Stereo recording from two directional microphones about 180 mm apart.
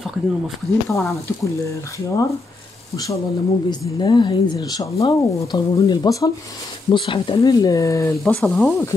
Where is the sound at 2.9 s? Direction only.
20° left (ahead or behind).